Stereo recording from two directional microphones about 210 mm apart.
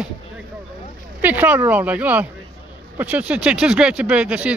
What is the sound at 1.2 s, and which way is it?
Speech, 5° right (ahead or behind).